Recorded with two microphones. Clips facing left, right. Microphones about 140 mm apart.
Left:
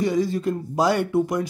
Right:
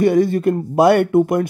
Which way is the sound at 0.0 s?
60° right (ahead or behind).